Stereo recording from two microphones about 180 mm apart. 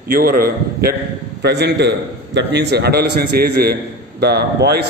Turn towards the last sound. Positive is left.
turn(degrees=-65)  # may be behind; listen again after turning